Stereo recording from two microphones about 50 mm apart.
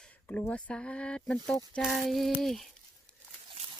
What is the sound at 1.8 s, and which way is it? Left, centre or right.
Speech, centre.